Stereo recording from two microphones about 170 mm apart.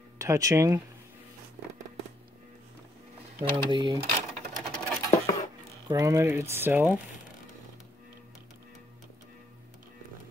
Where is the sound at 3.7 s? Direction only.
25° right (ahead or behind).